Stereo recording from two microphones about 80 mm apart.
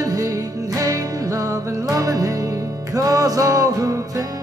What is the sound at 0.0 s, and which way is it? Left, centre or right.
Music, right.